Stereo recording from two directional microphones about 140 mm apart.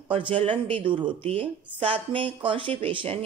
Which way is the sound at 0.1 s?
40° right (ahead or behind).